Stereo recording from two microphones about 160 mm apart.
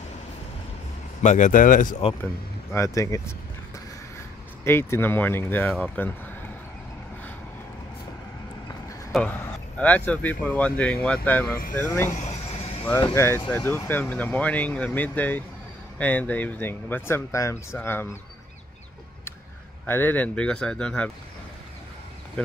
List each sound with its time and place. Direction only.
1.2 s speech: 50° left (ahead or behind)
2.7 s speech: 20° left (ahead or behind)
4.6 s speech: 15° left (ahead or behind)
9.1 s speech: 10° left (ahead or behind)
12.1 s a sound: 45° left (ahead or behind)
13.1 s speech: 15° left (ahead or behind)
19.9 s speech: 10° left (ahead or behind)